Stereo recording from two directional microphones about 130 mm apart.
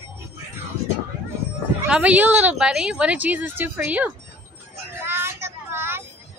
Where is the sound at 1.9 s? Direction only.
10° right (ahead or behind).